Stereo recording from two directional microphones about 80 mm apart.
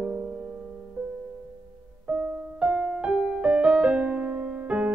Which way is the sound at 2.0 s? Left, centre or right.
Centre.